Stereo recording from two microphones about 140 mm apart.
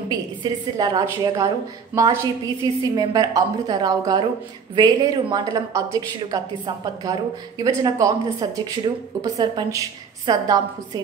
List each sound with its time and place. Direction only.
0.1 s a woman's voice: 25° right (ahead or behind)